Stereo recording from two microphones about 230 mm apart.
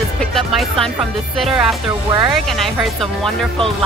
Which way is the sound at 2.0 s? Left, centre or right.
Centre.